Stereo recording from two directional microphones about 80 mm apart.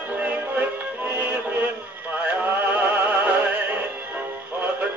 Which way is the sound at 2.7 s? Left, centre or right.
Centre.